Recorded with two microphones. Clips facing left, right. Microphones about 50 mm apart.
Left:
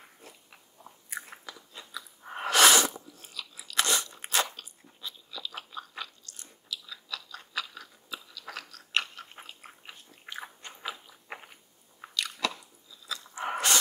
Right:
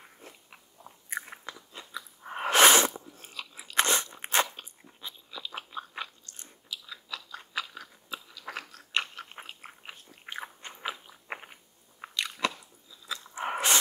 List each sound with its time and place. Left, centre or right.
1.1 s biting: centre
1.5 s chewing: centre
2.5 s sneeze: right
3.1 s biting: right
5.0 s chewing: right
9.7 s biting: centre
12.0 s chewing: right
13.0 s biting: right